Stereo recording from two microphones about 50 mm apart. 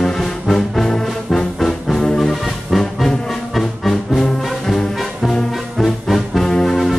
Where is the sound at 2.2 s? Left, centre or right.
Centre.